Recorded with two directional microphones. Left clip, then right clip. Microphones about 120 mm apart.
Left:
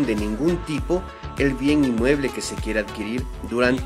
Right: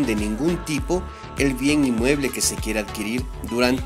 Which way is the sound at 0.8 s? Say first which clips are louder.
Left 1 dB; 30° right (ahead or behind).